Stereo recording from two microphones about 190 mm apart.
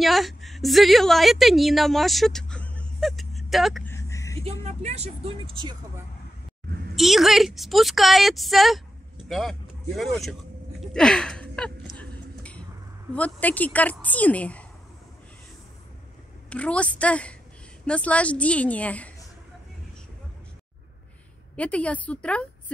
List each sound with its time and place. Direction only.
0.0 s a woman's voice: centre (ahead or behind)
3.8 s vehicle: 15° left (ahead or behind)
4.5 s speech: 35° right (ahead or behind)
7.0 s speech: centre (ahead or behind)
10.8 s a sound: 5° left (ahead or behind)
13.1 s a woman's voice: 10° left (ahead or behind)
16.4 s a woman's voice: 5° left (ahead or behind)
21.5 s a woman's voice: 5° left (ahead or behind)